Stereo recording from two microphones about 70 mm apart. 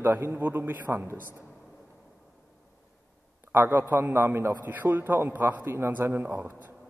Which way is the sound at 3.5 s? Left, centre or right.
Right.